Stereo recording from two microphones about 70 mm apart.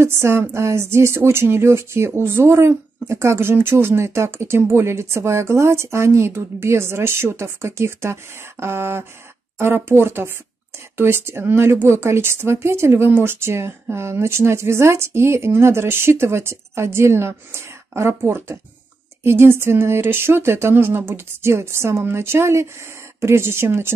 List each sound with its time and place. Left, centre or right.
0.0 s speech: right